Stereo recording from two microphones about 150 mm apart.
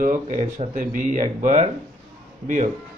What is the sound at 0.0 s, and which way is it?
A man's voice, 55° right (ahead or behind).